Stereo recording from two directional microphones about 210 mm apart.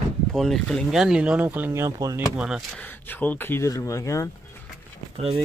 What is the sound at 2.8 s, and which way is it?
Speech, 10° left (ahead or behind).